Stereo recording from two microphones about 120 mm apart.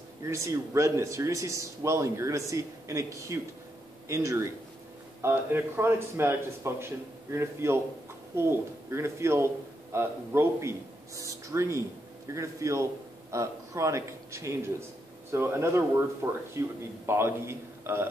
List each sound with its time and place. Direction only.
0.2 s speech: 25° right (ahead or behind)